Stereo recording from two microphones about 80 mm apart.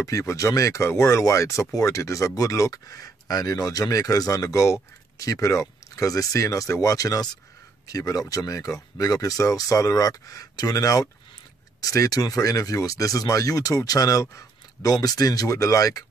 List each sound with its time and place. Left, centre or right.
0.0 s speech: left